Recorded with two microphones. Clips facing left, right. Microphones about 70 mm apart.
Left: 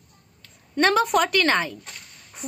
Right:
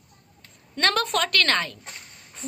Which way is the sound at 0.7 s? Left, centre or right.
Centre.